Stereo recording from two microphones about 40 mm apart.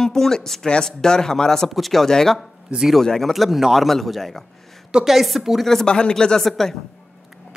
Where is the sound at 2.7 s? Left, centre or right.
Right.